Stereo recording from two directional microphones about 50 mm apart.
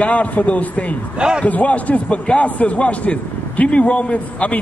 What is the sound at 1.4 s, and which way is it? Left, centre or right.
A man's voice, left.